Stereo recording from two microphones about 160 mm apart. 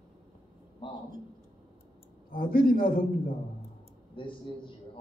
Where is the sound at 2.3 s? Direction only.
65° left (ahead or behind).